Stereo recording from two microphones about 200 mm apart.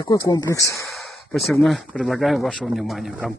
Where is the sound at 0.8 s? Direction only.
Centre (ahead or behind).